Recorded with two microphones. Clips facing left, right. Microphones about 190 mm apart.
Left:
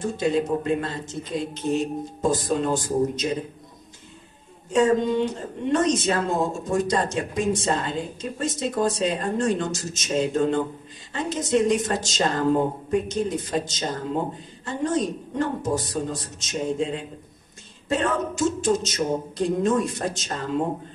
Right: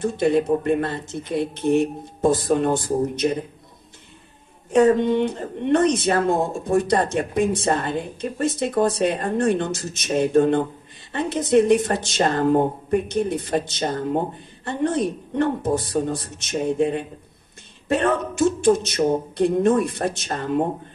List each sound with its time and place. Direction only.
0.2 s speech: 55° right (ahead or behind)
4.6 s speech: 60° right (ahead or behind)